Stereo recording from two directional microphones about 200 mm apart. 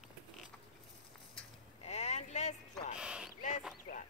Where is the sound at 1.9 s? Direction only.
35° left (ahead or behind).